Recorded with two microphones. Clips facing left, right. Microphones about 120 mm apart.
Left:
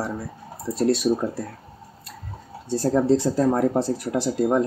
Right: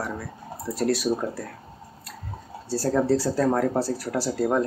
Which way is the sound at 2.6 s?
20° left (ahead or behind).